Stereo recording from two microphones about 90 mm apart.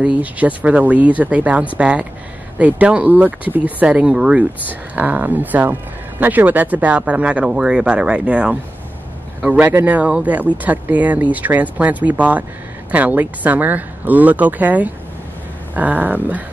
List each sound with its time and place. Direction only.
0.0 s speech: 15° right (ahead or behind)